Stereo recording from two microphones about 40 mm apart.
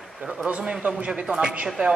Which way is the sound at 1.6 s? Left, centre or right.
Right.